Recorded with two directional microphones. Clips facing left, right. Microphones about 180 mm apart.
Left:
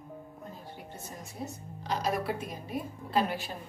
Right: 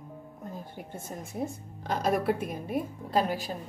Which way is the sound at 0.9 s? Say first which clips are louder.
Right 8 dB; 50° right (ahead or behind).